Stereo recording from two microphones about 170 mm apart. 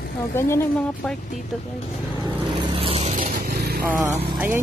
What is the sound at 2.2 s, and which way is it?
Vehicle, 30° right (ahead or behind).